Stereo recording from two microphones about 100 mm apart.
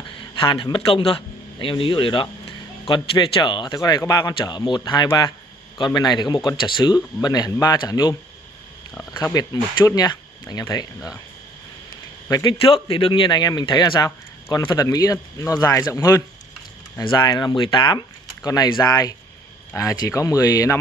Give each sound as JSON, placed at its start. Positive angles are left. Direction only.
{"t": 0.2, "sound": "a man's voice", "side_deg": 55}
{"t": 3.7, "sound": "speech", "side_deg": 40}
{"t": 4.4, "sound": "speech", "side_deg": 50}
{"t": 7.2, "sound": "speech", "side_deg": 40}
{"t": 9.2, "sound": "speech", "side_deg": 35}
{"t": 12.3, "sound": "speech", "side_deg": 40}
{"t": 12.9, "sound": "speech", "side_deg": 60}
{"t": 17.1, "sound": "speech", "side_deg": 45}